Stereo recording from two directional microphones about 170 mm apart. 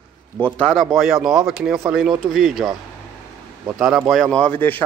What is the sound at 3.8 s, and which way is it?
Speech, centre (ahead or behind).